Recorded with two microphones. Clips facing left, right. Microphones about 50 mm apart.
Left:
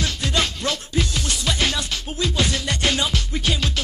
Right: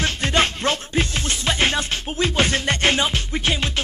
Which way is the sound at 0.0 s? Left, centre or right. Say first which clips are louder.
Right 3 dB; right.